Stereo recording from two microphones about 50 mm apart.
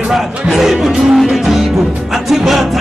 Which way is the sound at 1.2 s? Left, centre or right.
Centre.